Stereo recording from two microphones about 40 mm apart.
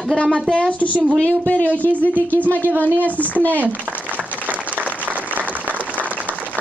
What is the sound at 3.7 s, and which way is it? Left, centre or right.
Applause, right.